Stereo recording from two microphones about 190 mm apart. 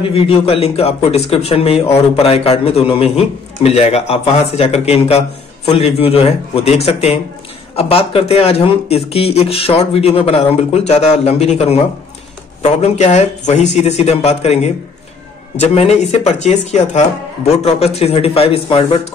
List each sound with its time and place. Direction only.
0.0 s speech: 30° left (ahead or behind)